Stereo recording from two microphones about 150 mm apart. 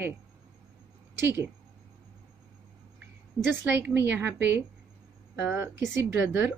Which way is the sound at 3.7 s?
15° right (ahead or behind).